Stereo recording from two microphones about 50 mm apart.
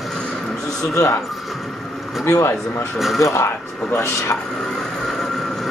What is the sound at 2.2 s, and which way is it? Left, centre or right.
Speech, left.